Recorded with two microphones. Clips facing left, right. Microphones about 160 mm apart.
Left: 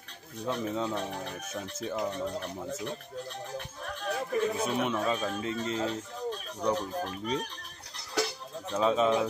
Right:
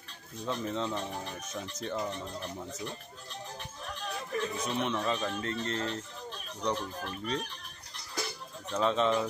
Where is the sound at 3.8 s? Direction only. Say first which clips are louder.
Left 5 dB; 55° left (ahead or behind).